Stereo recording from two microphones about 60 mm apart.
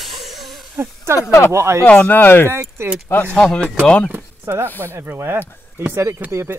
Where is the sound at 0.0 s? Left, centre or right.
Centre.